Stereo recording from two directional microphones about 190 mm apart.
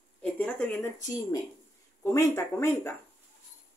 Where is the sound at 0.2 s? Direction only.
5° left (ahead or behind).